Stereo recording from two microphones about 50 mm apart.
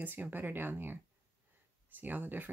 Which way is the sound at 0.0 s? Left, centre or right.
Right.